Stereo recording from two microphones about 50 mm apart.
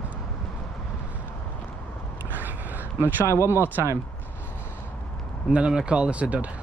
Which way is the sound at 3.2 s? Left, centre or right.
Left.